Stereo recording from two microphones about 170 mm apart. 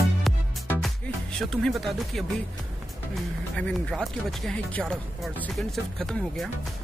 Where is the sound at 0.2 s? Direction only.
Centre (ahead or behind).